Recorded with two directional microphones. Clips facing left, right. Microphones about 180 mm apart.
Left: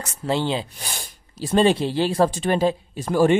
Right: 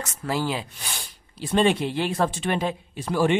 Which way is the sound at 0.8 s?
40° left (ahead or behind).